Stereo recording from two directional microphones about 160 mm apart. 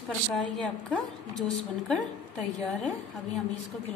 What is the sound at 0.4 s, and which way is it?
A woman's voice, 5° left (ahead or behind).